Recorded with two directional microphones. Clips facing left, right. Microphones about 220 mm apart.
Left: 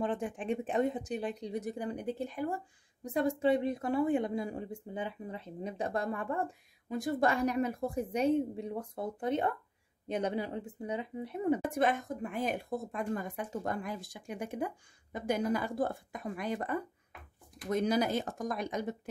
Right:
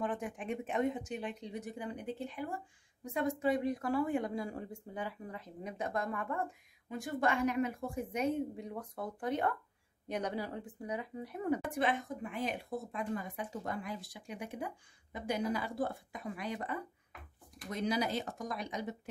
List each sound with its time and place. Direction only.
0.0 s a woman's voice: 30° left (ahead or behind)
11.8 s speech: 45° left (ahead or behind)